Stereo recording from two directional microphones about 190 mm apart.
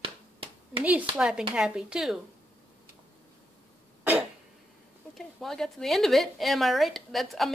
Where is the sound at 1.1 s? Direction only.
Centre (ahead or behind).